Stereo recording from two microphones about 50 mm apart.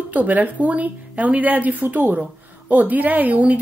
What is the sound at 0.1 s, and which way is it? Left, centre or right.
A woman's voice, right.